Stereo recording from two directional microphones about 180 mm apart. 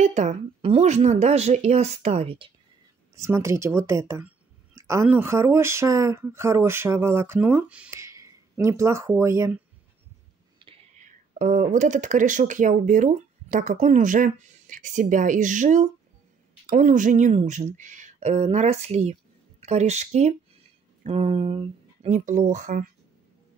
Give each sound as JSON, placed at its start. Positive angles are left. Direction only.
{"t": 0.0, "sound": "speech", "side_deg": -40}
{"t": 3.2, "sound": "speech", "side_deg": -15}
{"t": 11.1, "sound": "speech", "side_deg": -45}